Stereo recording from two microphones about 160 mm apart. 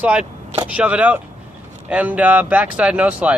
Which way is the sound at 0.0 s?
10° right (ahead or behind).